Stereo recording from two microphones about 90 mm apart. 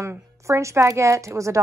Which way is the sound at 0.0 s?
30° right (ahead or behind).